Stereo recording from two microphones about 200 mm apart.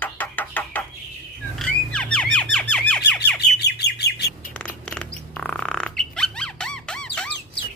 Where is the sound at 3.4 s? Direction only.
55° left (ahead or behind).